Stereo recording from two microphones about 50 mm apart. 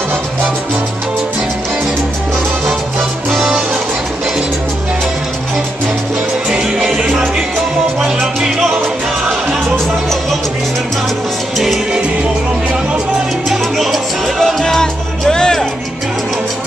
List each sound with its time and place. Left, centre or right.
3.3 s music: centre
6.5 s music: centre
7.0 s music: right
8.0 s salsa music: centre
11.5 s music: centre
13.5 s salsa music: centre
14.4 s music: centre